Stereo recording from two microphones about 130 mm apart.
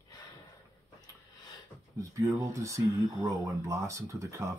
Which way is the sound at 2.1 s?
25° right (ahead or behind).